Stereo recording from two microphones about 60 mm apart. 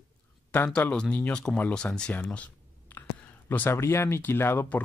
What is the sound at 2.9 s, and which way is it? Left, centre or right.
Whispering, left.